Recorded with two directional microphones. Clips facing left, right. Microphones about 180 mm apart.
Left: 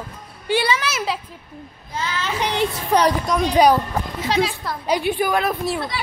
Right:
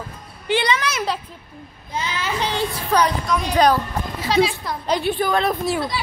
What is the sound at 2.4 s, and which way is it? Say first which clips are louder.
A child's voice: left 4 dB; 15° left (ahead or behind).